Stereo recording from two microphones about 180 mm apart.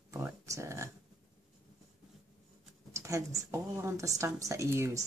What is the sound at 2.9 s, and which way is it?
A woman's voice, 15° right (ahead or behind).